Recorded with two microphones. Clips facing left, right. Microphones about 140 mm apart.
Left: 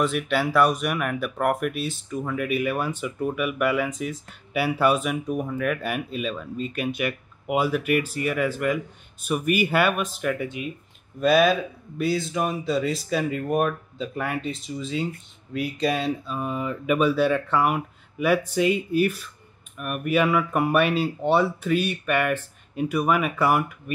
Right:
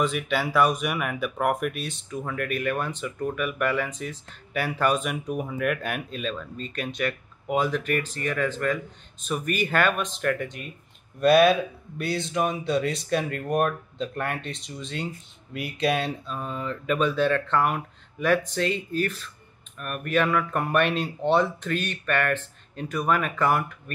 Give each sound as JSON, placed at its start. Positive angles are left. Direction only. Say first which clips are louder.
{"t": 0.0, "sound": "speech", "louder": "left 2 dB", "side_deg": 0}